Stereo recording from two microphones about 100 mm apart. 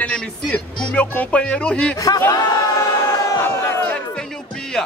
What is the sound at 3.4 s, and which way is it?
Crowd, 20° left (ahead or behind).